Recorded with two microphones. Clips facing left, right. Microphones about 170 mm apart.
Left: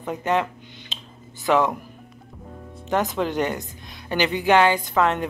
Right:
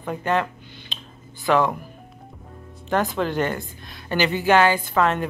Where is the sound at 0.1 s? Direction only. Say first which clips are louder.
Even; 20° left (ahead or behind).